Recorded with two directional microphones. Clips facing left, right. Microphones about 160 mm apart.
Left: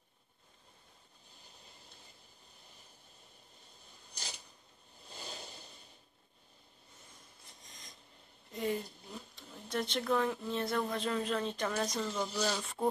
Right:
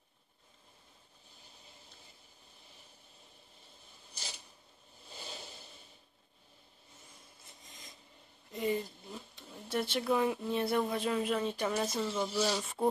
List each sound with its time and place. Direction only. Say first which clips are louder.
7.4 s filing: right 2 dB; centre (ahead or behind)
8.5 s speech: right 2 dB; centre (ahead or behind)